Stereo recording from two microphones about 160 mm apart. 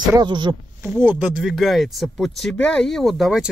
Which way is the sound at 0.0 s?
25° right (ahead or behind).